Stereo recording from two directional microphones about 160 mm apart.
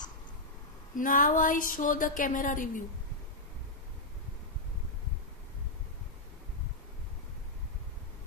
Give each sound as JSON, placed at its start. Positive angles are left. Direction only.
{"t": 0.9, "sound": "a woman's voice", "side_deg": 60}